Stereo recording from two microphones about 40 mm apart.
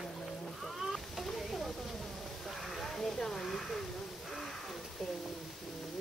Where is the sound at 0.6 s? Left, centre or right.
Centre.